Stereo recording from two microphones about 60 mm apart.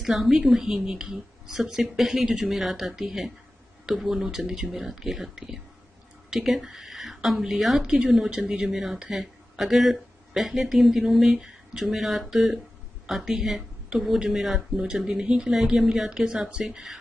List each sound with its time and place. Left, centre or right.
0.0 s a woman's voice: centre
7.8 s a woman's voice: centre